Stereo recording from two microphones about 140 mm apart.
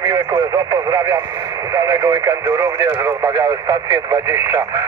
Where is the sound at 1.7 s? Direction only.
25° right (ahead or behind).